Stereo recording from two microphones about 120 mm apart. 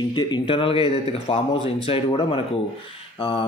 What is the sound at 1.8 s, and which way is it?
Speech, 50° left (ahead or behind).